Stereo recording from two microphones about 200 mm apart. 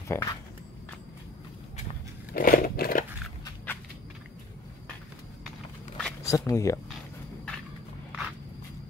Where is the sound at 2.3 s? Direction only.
45° left (ahead or behind).